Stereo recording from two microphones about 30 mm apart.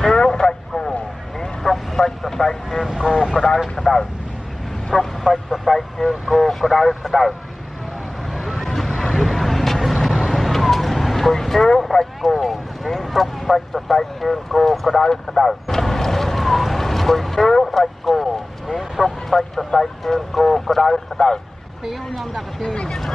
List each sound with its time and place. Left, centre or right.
0.0 s radio: left
1.6 s vehicle: centre
2.2 s speech: centre
2.9 s speech: centre
3.7 s speech: centre
4.9 s speech: centre
8.3 s vehicle: centre
11.8 s a sound: centre
14.2 s speech: centre
15.0 s vehicle: centre
17.6 s a sound: centre
18.2 s vehicle: centre
18.9 s speech: centre
22.1 s speech: centre